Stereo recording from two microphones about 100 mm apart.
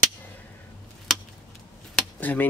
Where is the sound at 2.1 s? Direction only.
15° left (ahead or behind).